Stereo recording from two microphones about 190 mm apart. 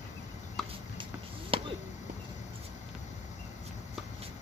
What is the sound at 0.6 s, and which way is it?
Fowl, centre (ahead or behind).